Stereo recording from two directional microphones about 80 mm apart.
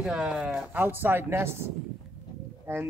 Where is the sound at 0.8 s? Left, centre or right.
Right.